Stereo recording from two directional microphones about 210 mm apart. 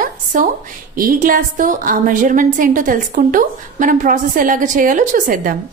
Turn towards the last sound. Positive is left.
turn(degrees=-40)  # may be behind; listen again after turning